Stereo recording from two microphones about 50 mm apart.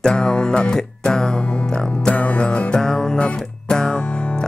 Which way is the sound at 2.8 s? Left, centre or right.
Centre.